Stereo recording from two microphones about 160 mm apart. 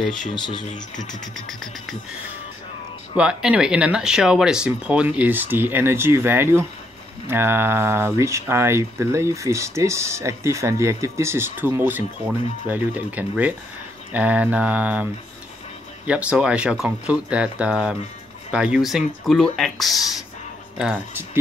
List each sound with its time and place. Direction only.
0.3 s speech: 30° left (ahead or behind)
3.2 s speech: 5° right (ahead or behind)
16.1 s speech: 5° right (ahead or behind)